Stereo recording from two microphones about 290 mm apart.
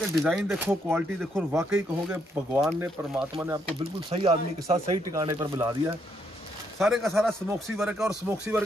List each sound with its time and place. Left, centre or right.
0.2 s speech: centre
4.1 s speech: centre
6.8 s a man's voice: centre